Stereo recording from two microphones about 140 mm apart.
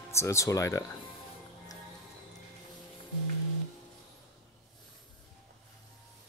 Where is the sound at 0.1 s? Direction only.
20° left (ahead or behind).